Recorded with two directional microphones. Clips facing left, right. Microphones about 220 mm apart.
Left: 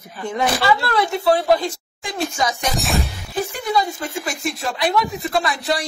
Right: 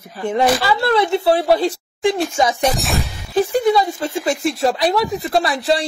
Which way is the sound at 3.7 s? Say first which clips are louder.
Right 3 dB; 30° right (ahead or behind).